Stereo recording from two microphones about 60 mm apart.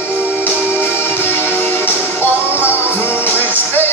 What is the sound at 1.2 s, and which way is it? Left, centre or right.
Music, left.